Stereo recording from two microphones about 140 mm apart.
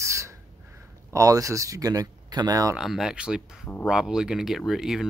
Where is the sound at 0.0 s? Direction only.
20° right (ahead or behind).